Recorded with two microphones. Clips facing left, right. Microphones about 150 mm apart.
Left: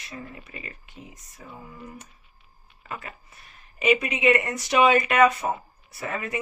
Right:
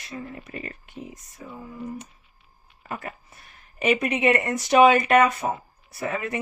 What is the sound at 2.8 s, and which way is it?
Speech, 45° right (ahead or behind).